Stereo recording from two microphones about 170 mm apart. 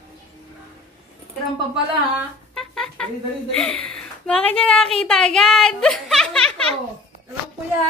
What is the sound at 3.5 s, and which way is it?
A woman's voice, 5° left (ahead or behind).